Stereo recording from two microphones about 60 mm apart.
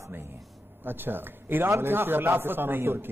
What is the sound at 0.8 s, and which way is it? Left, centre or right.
A man's voice, right.